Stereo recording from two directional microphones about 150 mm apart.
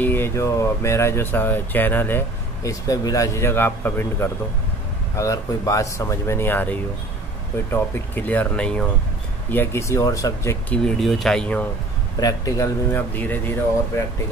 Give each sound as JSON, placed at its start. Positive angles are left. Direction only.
{"t": 0.0, "sound": "speech", "side_deg": 15}
{"t": 11.0, "sound": "speech", "side_deg": 0}
{"t": 12.2, "sound": "speech", "side_deg": 25}